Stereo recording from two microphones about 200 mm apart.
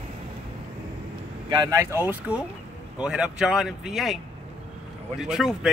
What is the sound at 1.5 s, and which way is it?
Speech, 20° right (ahead or behind).